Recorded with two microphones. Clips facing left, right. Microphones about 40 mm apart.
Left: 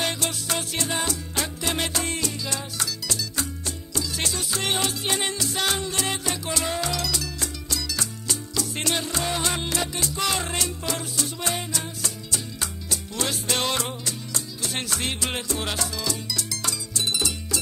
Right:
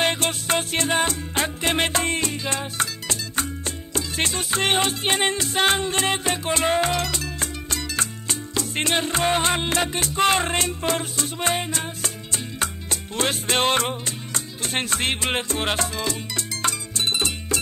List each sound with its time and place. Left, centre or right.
0.0 s music: right